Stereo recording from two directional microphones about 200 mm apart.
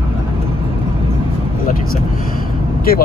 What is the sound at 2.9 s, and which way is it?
Speech, 45° left (ahead or behind).